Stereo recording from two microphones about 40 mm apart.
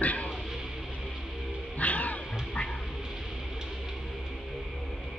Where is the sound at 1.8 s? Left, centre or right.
Left.